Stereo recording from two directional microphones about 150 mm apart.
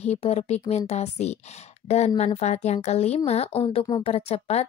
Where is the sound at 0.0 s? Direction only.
45° left (ahead or behind).